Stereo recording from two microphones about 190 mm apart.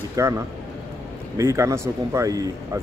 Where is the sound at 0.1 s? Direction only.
15° right (ahead or behind).